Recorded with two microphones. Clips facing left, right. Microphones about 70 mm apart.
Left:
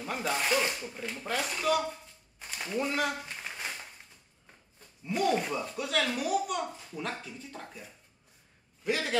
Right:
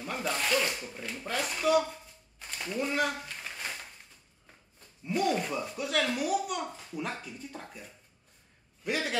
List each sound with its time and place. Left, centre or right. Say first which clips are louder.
0.0 s zipper: left 1 dB; centre
0.5 s speech: even; centre
1.0 s speech: left 1 dB; centre
2.3 s a sound: left 1 dB; centre
3.4 s crumpling: left 1 dB; centre
5.0 s speech: left 1 dB; centre